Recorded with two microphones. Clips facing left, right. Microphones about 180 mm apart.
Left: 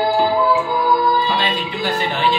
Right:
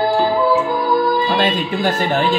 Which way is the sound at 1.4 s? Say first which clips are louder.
Right 5 dB; 45° right (ahead or behind).